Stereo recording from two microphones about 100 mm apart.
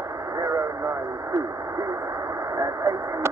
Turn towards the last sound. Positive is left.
turn(degrees=-30)  # may be behind; listen again after turning